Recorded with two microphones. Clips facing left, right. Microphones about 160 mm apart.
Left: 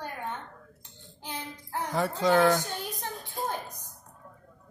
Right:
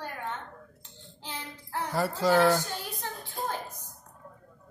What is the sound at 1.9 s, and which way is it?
Speech, centre (ahead or behind).